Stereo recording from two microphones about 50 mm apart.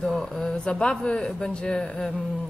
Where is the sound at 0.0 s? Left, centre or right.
Centre.